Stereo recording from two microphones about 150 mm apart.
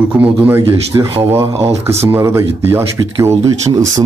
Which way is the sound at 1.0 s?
35° right (ahead or behind).